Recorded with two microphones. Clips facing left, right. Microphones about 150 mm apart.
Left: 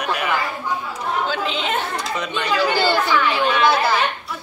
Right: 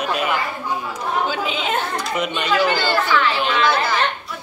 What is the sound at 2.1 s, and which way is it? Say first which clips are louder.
Speech: right 2 dB; 20° right (ahead or behind).